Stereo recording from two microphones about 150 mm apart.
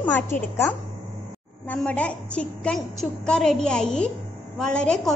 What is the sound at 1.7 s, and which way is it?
A woman's voice, 10° left (ahead or behind).